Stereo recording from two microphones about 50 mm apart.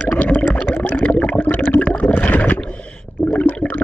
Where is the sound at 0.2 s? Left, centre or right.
Left.